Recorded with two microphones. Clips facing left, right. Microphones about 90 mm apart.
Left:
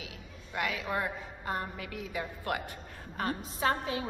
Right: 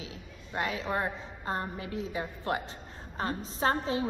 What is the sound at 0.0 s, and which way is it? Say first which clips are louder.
A woman's voice: right 2 dB; 30° right (ahead or behind).